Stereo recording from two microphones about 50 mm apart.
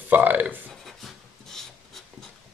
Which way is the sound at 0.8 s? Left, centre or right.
Centre.